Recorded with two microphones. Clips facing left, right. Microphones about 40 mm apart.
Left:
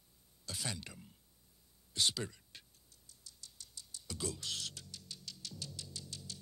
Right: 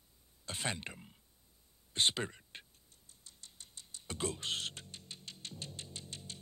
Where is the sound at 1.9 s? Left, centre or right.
Right.